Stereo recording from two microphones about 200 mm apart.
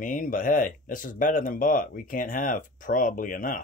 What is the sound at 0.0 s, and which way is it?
Speech, 40° left (ahead or behind).